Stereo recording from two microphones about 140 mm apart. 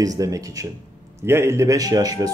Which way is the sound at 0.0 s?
25° right (ahead or behind).